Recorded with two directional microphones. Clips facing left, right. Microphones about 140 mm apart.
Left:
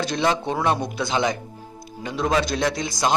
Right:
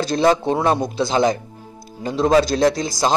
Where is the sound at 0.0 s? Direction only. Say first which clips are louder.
Right 6 dB; 35° right (ahead or behind).